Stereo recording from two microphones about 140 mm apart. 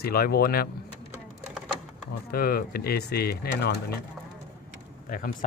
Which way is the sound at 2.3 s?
90° left.